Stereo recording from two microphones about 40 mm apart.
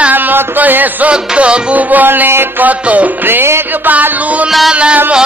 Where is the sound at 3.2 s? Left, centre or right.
Right.